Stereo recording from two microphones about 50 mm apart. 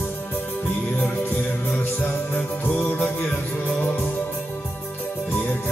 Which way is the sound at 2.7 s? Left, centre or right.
Left.